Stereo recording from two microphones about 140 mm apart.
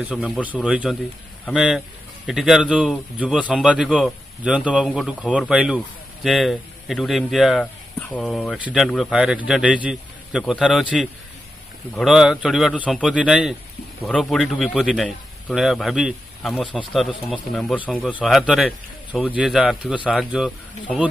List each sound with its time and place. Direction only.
0.0 s a man's voice: centre (ahead or behind)
7.6 s a sound: 10° left (ahead or behind)
8.3 s speech: 5° left (ahead or behind)
8.5 s a man's voice: 10° right (ahead or behind)
12.0 s a man's voice: centre (ahead or behind)
18.2 s a man's voice: centre (ahead or behind)